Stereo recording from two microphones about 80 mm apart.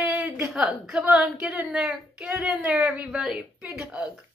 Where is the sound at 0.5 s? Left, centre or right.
Centre.